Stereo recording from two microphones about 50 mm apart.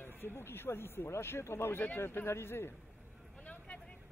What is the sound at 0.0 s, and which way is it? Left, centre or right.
A man's voice, left.